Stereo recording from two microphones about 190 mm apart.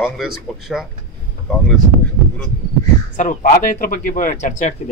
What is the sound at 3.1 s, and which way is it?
Speech, 45° left (ahead or behind).